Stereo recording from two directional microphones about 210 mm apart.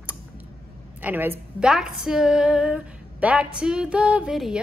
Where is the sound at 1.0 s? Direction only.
10° right (ahead or behind).